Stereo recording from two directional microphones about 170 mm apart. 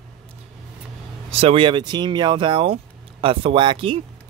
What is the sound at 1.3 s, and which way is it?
Speech, 35° right (ahead or behind).